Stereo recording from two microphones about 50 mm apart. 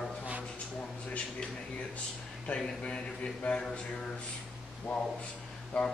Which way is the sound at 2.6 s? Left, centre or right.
Centre.